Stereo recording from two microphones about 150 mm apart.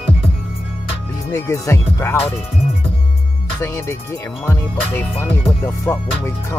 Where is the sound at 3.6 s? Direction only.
20° left (ahead or behind).